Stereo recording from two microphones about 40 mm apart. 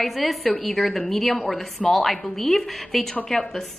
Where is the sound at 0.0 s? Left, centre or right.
Centre.